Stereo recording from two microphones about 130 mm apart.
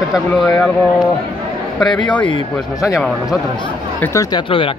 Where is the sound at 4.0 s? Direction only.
25° left (ahead or behind).